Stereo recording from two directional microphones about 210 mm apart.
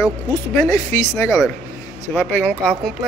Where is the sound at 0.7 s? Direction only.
15° left (ahead or behind).